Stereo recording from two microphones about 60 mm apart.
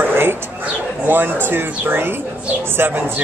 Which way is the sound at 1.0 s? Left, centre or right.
Right.